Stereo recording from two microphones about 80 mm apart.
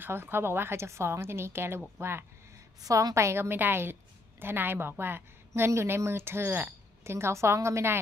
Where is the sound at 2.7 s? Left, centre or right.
Right.